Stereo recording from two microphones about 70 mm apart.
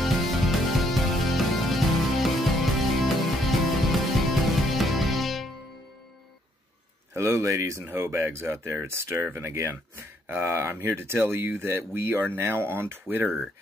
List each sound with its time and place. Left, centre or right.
0.0 s music: centre
7.2 s speech: right